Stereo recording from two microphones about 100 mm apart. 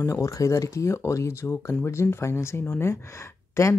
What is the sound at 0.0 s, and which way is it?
Speech, 30° left (ahead or behind).